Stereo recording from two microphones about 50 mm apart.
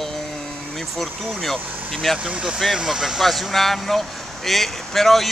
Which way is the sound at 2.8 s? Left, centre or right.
Centre.